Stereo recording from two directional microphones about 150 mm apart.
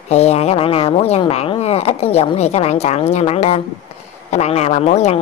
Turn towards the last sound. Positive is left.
turn(degrees=45)  # may be behind; listen again after turning